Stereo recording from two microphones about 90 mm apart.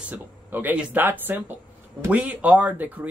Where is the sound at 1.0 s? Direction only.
25° right (ahead or behind).